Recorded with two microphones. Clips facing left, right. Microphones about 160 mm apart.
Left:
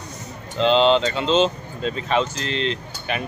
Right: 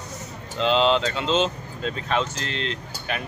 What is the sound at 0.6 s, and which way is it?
Speech, centre (ahead or behind).